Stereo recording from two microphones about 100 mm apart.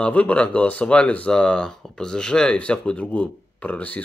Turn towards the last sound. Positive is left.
turn(degrees=15)  # may be behind; listen again after turning